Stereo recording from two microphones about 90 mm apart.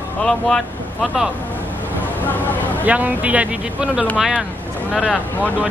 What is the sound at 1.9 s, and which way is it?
Vehicle, 20° left (ahead or behind).